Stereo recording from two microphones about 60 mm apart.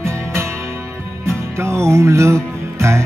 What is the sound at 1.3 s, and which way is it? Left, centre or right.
Music, right.